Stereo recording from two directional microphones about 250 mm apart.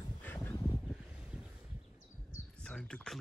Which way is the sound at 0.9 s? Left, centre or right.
Centre.